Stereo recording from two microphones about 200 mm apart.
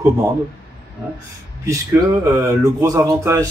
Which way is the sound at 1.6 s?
15° right (ahead or behind).